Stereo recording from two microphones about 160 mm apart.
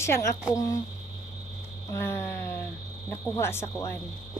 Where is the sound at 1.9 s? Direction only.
15° left (ahead or behind).